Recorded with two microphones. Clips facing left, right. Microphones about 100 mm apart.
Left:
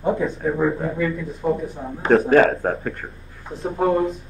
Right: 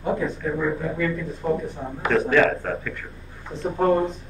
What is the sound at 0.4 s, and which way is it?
Speech, 35° left (ahead or behind).